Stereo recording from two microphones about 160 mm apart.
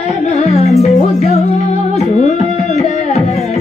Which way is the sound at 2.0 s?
45° left (ahead or behind).